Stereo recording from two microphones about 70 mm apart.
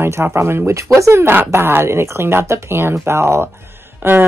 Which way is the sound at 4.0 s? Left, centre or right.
Right.